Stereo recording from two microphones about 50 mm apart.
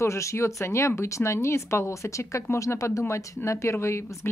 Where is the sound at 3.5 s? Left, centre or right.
Left.